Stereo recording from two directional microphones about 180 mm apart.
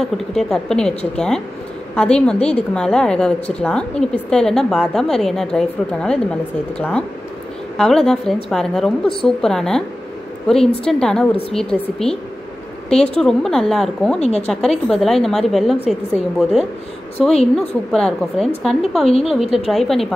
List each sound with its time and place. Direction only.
0.0 s a woman's voice: centre (ahead or behind)
14.2 s speech: 35° left (ahead or behind)
14.9 s a woman's voice: centre (ahead or behind)
19.0 s speech: 35° left (ahead or behind)
19.7 s a woman's voice: centre (ahead or behind)